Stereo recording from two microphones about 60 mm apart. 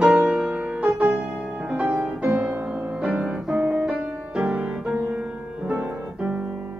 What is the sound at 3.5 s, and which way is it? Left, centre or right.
Music, right.